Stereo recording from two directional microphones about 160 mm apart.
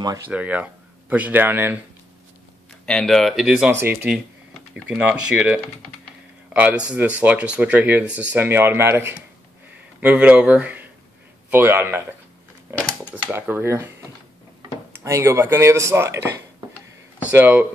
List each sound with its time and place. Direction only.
0.3 s speech: 10° right (ahead or behind)
2.9 s speech: 5° left (ahead or behind); by 12.0 s 15° right (ahead or behind)
12.7 s speech: 10° left (ahead or behind)
13.1 s speech: 15° right (ahead or behind)